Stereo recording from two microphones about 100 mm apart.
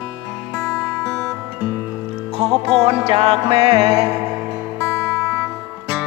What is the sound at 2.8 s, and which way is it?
Music, 80° right.